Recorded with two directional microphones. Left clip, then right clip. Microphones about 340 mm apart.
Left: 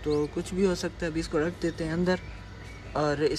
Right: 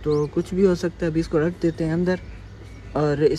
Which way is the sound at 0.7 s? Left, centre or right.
Centre.